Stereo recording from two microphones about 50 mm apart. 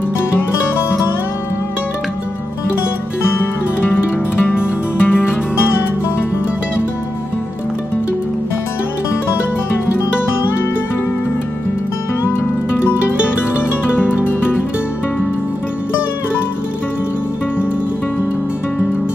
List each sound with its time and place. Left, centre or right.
3.3 s music: left
12.8 s music: left